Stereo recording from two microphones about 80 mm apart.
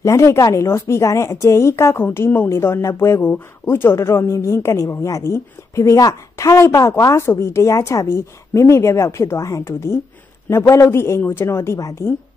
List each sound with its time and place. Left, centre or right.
0.0 s a woman's voice: left